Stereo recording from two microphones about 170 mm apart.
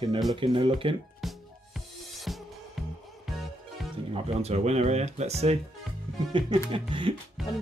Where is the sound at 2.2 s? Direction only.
Centre (ahead or behind).